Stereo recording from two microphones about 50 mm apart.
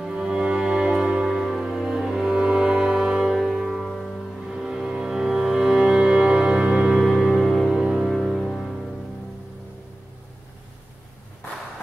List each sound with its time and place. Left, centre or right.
0.0 s music: centre
1.3 s music: centre
4.0 s music: centre
6.9 s music: centre
8.0 s music: centre